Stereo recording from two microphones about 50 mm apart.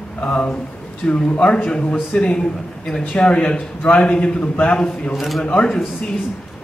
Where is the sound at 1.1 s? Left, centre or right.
Left.